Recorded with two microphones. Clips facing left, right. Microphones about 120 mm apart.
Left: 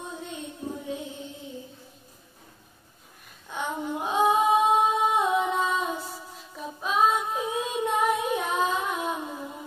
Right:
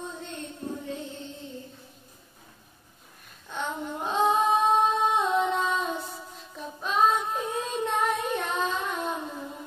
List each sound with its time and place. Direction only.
0.1 s music: 10° left (ahead or behind)
3.4 s female singing: 10° left (ahead or behind)